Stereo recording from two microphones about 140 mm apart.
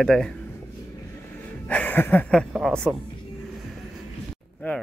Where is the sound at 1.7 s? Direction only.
10° left (ahead or behind).